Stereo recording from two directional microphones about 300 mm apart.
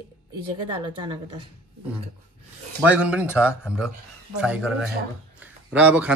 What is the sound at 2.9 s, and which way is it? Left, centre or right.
Speech, centre.